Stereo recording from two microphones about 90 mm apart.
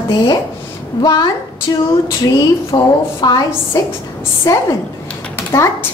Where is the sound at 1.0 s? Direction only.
50° left (ahead or behind).